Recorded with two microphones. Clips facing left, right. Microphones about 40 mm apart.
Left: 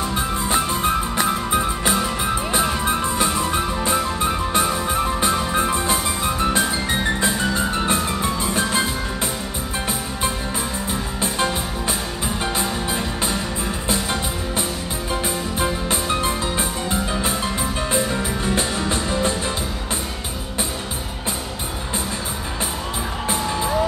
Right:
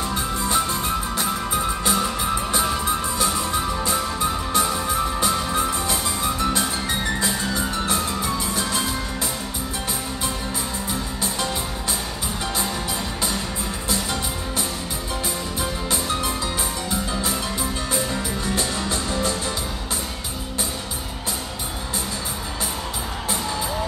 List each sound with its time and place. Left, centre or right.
0.1 s music: left
2.5 s music: left
10.9 s music: left
12.5 s music: left
15.6 s music: left